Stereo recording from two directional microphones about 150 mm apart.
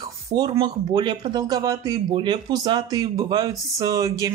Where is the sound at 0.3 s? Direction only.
30° right (ahead or behind).